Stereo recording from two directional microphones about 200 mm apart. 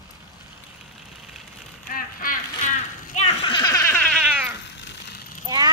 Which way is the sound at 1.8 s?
45° left (ahead or behind).